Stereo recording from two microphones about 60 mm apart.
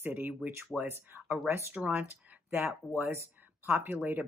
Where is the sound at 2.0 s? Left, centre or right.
Right.